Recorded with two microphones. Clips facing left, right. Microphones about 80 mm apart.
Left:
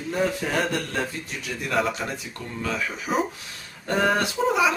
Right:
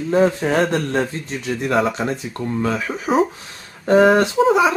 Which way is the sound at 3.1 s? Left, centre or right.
Right.